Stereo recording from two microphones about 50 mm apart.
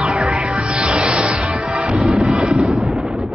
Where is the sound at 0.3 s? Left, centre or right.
Centre.